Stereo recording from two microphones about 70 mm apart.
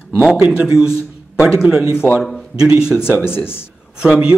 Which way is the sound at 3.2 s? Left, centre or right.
Left.